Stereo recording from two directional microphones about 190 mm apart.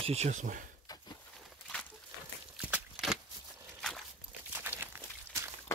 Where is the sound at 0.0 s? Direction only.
35° right (ahead or behind).